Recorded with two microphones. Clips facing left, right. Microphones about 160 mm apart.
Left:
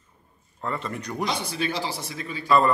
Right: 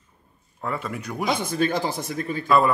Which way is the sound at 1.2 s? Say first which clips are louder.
Right 5 dB; 50° right (ahead or behind).